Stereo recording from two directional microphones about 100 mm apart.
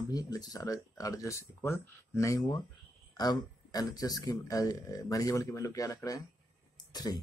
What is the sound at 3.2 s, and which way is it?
Speech, 40° left (ahead or behind).